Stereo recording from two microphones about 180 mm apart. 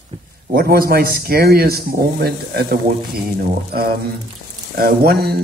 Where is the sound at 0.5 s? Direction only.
55° right (ahead or behind).